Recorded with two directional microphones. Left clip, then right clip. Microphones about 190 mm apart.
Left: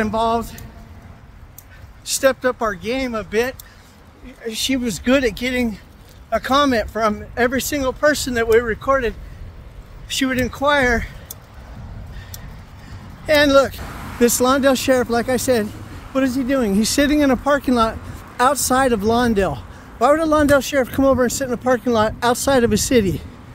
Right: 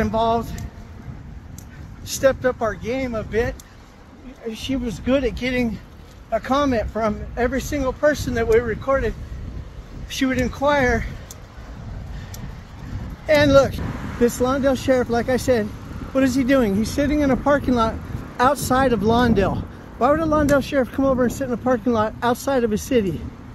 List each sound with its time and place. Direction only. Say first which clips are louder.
0.0 s speech: left 1 dB; centre (ahead or behind)
2.0 s speech: left 1 dB; 5° left (ahead or behind)
4.5 s speech: left 5 dB; 25° left (ahead or behind)
5.4 s speech: left 2 dB; 5° left (ahead or behind)
6.3 s speech: left 3 dB; 15° left (ahead or behind)
10.0 s speech: left 2 dB; centre (ahead or behind)
13.3 s speech: left 1 dB; centre (ahead or behind)
14.2 s speech: left 4 dB; 15° left (ahead or behind)
16.3 s speech: right 3 dB; 15° right (ahead or behind)
16.8 s speech: left 4 dB; 20° left (ahead or behind); by 19.6 s centre (ahead or behind)
20.0 s speech: left 3 dB; 15° left (ahead or behind)